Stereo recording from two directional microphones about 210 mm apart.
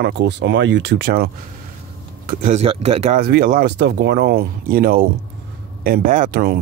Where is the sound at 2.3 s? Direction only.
35° right (ahead or behind).